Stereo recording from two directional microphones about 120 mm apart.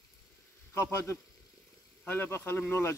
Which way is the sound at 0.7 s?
20° left (ahead or behind).